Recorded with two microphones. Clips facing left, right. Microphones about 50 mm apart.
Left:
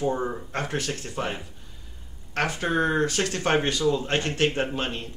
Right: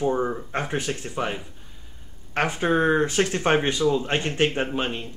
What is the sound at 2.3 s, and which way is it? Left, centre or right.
Speech, right.